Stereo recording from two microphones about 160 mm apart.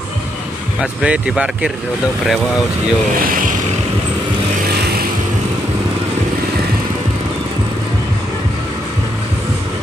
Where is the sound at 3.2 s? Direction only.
60° right (ahead or behind).